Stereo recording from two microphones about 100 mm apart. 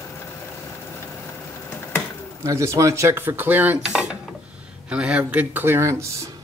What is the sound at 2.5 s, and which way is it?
Speech, 35° right (ahead or behind).